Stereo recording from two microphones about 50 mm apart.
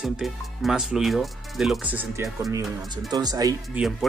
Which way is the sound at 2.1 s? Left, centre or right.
Right.